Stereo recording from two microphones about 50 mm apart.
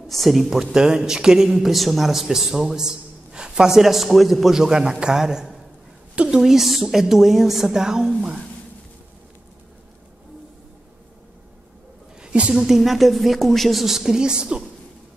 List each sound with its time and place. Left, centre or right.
0.1 s speech: centre
12.2 s a sound: centre
12.5 s speech: centre